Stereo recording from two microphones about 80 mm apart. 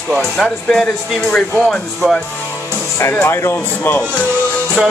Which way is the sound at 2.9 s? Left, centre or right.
Left.